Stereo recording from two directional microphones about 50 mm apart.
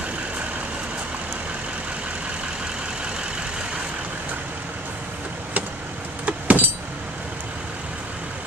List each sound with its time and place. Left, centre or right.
6.2 s vehicle: right